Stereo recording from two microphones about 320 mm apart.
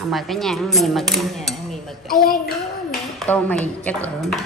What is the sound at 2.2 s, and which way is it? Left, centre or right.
Speech, left.